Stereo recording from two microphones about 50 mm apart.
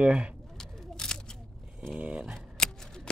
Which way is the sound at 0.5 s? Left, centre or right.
Centre.